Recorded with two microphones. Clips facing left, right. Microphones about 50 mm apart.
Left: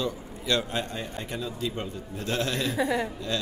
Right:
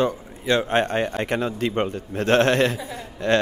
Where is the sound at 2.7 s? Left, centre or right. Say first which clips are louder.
Left 7 dB; left.